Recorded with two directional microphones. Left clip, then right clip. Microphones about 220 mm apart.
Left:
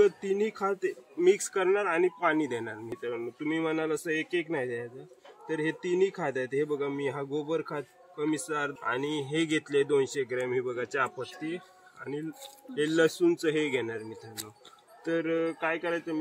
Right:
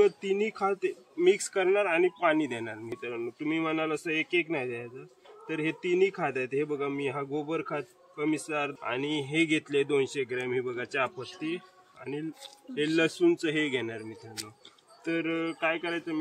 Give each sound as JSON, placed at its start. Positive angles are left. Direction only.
{"t": 0.0, "sound": "a man's voice", "side_deg": -15}